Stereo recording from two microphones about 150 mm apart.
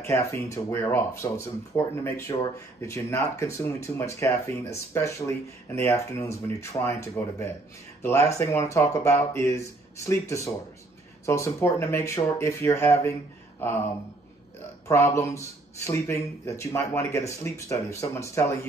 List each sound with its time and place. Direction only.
0.0 s speech: 20° left (ahead or behind)
13.6 s a sound: 15° left (ahead or behind)
14.9 s speech: 20° left (ahead or behind)